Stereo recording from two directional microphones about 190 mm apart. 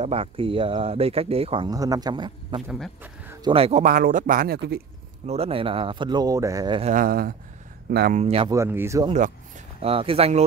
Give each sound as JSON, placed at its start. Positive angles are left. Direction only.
{"t": 0.0, "sound": "speech", "side_deg": -30}
{"t": 2.7, "sound": "speech", "side_deg": -5}
{"t": 3.4, "sound": "speech", "side_deg": -30}
{"t": 3.8, "sound": "speech", "side_deg": -45}
{"t": 5.2, "sound": "speech", "side_deg": -35}
{"t": 6.8, "sound": "speech", "side_deg": -45}
{"t": 8.2, "sound": "speech", "side_deg": -30}
{"t": 8.5, "sound": "speech", "side_deg": -15}
{"t": 9.8, "sound": "speech", "side_deg": -30}